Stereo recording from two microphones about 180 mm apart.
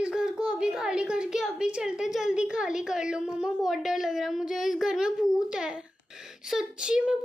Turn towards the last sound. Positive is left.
turn(degrees=-5)  # may be behind; listen again after turning